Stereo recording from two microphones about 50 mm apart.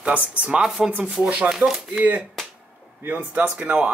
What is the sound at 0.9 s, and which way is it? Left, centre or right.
Speech, right.